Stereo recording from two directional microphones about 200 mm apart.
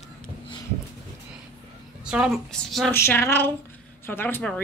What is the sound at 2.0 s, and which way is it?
Speech, 5° right (ahead or behind).